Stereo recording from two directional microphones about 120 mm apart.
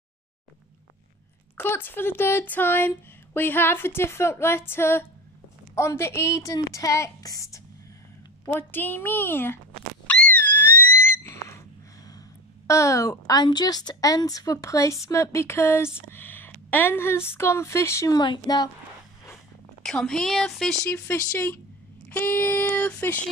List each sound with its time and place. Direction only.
1.6 s a woman's voice: 20° left (ahead or behind)
8.5 s a woman's voice: 15° left (ahead or behind)
10.0 s a sound: 10° left (ahead or behind)
16.1 s a woman's voice: 15° left (ahead or behind); by 18.7 s 35° left (ahead or behind)
19.8 s a woman's voice: 5° left (ahead or behind)
20.9 s a woman's voice: 15° left (ahead or behind)